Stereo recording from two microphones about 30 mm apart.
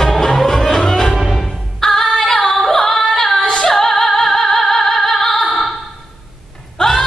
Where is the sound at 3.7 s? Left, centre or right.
Centre.